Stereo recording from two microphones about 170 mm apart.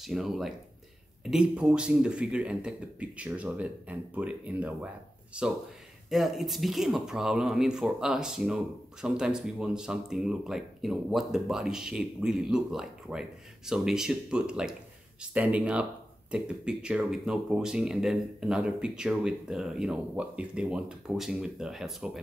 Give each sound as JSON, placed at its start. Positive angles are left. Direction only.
{"t": 0.0, "sound": "speech", "side_deg": 0}